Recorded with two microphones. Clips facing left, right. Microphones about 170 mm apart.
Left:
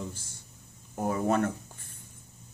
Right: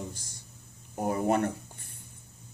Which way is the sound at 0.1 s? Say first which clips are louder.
Even; 15° right (ahead or behind).